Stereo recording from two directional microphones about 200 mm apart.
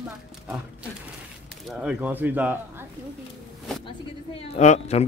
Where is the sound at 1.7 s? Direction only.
5° right (ahead or behind).